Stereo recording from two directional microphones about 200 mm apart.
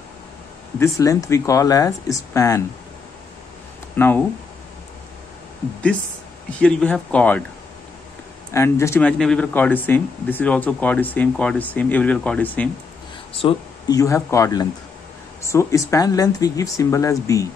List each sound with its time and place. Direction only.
0.7 s speech: 15° left (ahead or behind)
3.9 s speech: 10° left (ahead or behind)
6.6 s speech: 5° left (ahead or behind)
8.5 s speech: 15° left (ahead or behind)
13.3 s speech: 25° left (ahead or behind)